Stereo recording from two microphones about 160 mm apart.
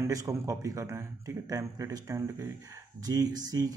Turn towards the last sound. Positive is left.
turn(degrees=-25)  # may be behind; listen again after turning